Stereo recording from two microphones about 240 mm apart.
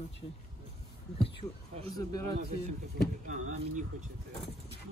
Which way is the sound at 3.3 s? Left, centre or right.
Right.